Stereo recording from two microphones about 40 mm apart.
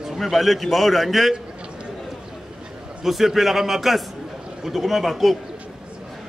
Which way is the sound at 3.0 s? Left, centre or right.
Centre.